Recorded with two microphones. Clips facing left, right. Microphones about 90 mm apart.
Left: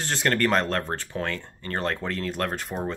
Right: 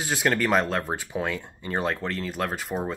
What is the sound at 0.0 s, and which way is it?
Speech, 5° right (ahead or behind).